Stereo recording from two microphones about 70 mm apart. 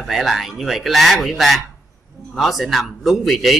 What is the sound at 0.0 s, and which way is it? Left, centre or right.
Speech, centre.